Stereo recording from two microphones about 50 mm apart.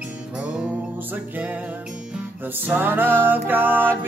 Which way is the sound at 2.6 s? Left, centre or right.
Right.